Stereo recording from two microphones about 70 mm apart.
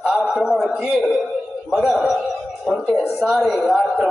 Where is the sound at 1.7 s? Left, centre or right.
Centre.